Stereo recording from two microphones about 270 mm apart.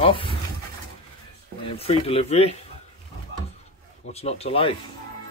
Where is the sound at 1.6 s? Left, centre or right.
Left.